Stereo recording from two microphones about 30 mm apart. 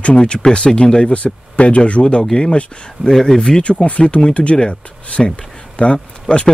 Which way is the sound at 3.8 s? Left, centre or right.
Left.